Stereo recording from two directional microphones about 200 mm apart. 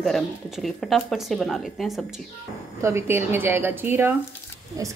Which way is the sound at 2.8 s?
15° right (ahead or behind).